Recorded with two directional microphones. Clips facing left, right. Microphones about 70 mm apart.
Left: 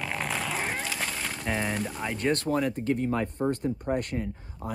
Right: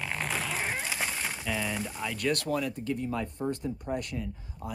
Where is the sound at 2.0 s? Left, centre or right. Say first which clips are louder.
Left 2 dB; left.